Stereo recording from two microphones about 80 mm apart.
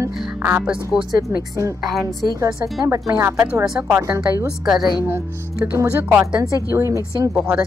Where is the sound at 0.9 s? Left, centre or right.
Centre.